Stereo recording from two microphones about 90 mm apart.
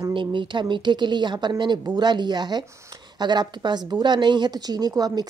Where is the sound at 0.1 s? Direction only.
65° right (ahead or behind).